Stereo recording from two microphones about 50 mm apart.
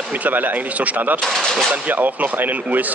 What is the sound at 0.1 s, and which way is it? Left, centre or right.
Speech, right.